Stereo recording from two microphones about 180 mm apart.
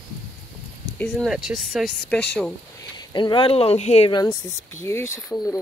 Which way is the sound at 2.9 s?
25° left (ahead or behind).